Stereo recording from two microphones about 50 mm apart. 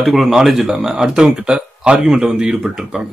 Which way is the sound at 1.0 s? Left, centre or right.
Centre.